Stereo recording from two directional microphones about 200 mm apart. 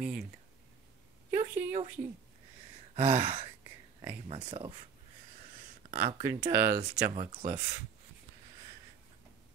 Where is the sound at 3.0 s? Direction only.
30° right (ahead or behind).